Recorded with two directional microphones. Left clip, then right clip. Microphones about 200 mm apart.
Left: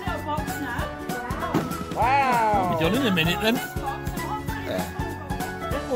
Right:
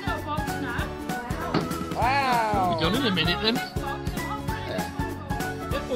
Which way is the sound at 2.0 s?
50° right (ahead or behind).